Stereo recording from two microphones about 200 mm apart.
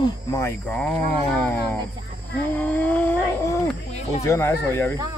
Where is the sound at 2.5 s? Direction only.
10° left (ahead or behind).